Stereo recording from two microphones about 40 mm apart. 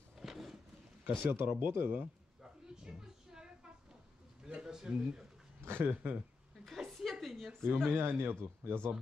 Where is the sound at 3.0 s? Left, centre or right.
Centre.